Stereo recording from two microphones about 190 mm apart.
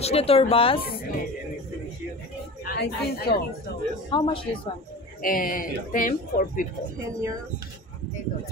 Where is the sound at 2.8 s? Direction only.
60° left (ahead or behind).